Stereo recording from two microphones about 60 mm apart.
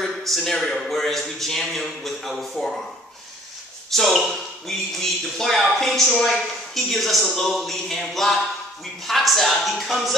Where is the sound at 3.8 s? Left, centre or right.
Centre.